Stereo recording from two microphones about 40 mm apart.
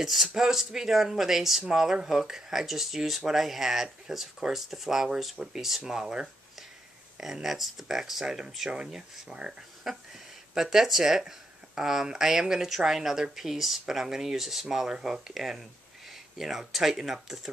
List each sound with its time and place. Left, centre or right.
0.0 s speech: centre; by 9.7 s right
10.5 s speech: centre